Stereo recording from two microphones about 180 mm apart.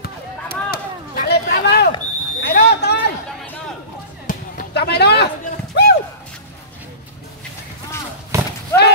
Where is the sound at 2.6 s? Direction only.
65° left (ahead or behind).